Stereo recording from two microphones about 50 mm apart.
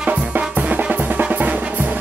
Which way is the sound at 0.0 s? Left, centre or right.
Right.